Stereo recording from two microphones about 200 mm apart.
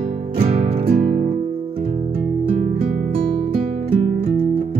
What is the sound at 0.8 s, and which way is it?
Music, 45° right (ahead or behind).